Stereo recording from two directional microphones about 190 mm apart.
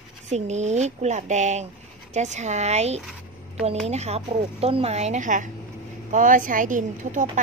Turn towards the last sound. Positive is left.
turn(degrees=-40)  # may be behind; listen again after turning